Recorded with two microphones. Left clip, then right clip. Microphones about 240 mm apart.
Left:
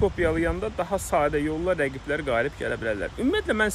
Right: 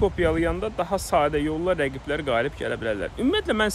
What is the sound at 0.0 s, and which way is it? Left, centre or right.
Speech, centre.